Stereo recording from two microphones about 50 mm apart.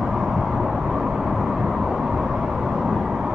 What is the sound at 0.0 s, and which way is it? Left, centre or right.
Vehicle, centre.